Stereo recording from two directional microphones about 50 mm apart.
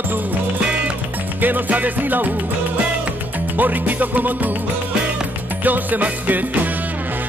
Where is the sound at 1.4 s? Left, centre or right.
Right.